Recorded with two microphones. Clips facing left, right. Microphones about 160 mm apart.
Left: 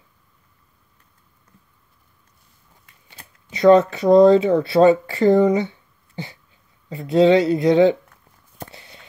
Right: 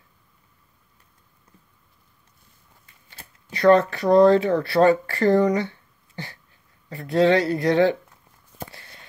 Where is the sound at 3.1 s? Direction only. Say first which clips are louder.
Even; 20° left (ahead or behind).